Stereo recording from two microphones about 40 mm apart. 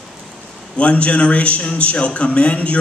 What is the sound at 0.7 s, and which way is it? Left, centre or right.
A man's voice, left.